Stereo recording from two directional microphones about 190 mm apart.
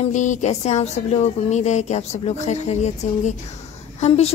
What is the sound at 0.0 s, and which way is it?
Speech, 40° left (ahead or behind).